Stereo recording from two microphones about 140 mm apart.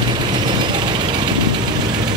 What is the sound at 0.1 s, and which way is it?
Vehicle, 35° right (ahead or behind).